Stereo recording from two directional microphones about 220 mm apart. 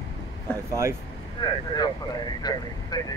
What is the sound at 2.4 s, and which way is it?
Speech, 15° left (ahead or behind).